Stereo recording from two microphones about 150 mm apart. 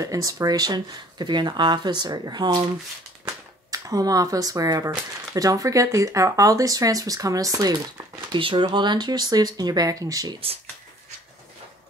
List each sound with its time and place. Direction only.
0.0 s speech: 25° right (ahead or behind)